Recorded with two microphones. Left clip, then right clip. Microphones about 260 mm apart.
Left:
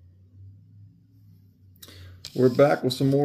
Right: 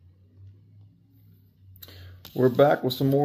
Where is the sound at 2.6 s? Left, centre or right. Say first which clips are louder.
Right 1 dB; centre.